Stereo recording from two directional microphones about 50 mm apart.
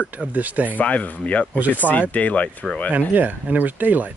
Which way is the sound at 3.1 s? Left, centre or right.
Right.